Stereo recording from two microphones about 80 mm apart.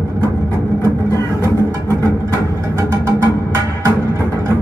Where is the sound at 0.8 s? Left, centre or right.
Right.